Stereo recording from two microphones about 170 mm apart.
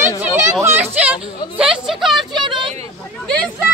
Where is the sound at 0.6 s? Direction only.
10° right (ahead or behind).